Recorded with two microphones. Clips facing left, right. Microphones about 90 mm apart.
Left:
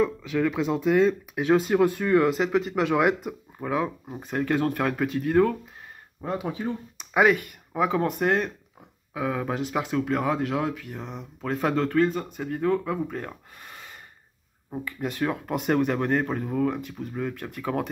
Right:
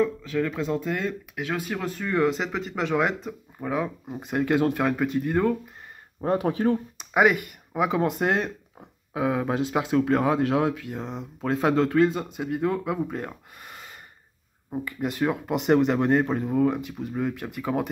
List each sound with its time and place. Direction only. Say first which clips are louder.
0.0 s speech: left 1 dB; 10° left (ahead or behind)
3.6 s speech: left 1 dB; centre (ahead or behind)
4.2 s speech: right 2 dB; 15° right (ahead or behind)
4.7 s speech: right 2 dB; 5° right (ahead or behind)
6.2 s speech: right 6 dB; 50° right (ahead or behind)
7.2 s speech: even; 10° right (ahead or behind)
13.3 s speech: even; 5° right (ahead or behind)
14.9 s speech: right 2 dB; 10° right (ahead or behind)
15.9 s speech: right 3 dB; 20° right (ahead or behind)